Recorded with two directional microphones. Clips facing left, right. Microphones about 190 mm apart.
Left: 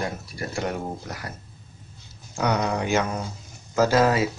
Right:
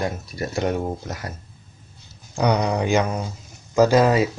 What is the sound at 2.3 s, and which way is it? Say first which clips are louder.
Speech: right 3 dB; 20° right (ahead or behind).